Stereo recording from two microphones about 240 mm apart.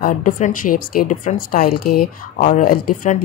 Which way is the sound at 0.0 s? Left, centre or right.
Left.